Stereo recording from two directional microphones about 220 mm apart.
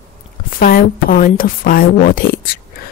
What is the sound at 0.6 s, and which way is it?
Speech, 40° left (ahead or behind).